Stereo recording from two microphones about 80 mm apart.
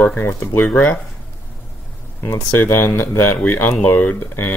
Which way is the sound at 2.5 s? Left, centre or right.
Left.